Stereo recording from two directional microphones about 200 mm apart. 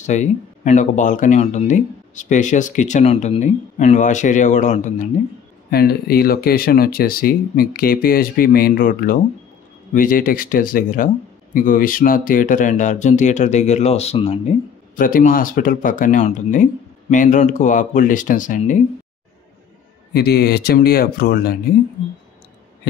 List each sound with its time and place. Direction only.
0.0 s speech: 35° left (ahead or behind)
5.7 s speech: 50° left (ahead or behind); by 14.4 s 30° left (ahead or behind)
15.0 s speech: 45° left (ahead or behind)
20.1 s speech: 55° left (ahead or behind)